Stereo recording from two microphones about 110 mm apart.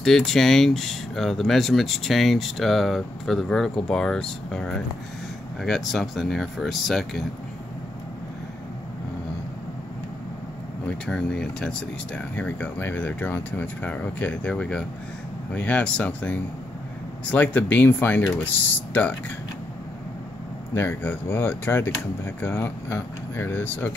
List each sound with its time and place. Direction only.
0.0 s speech: 5° left (ahead or behind)
10.9 s speech: 5° left (ahead or behind)
20.7 s speech: 20° left (ahead or behind)